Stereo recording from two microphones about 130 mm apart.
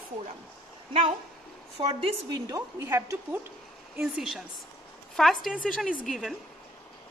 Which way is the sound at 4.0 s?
5° right (ahead or behind).